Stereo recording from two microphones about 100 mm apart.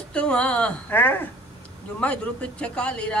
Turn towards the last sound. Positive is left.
turn(degrees=10)  # may be behind; listen again after turning